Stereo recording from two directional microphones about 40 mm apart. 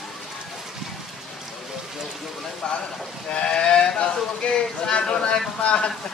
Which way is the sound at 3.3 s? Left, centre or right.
Left.